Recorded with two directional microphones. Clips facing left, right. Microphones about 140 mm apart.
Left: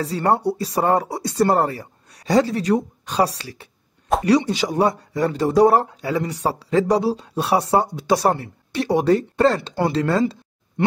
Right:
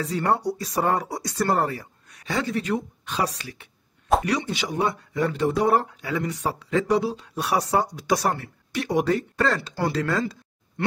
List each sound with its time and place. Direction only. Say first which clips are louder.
0.0 s speech: left 4 dB; 30° left (ahead or behind)